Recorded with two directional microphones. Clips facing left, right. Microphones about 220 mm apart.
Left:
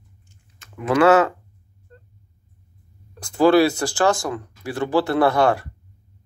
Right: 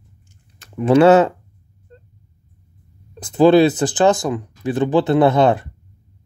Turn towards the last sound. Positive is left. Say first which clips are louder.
# right 4 dB
turn(degrees=-20)  # may be behind; listen again after turning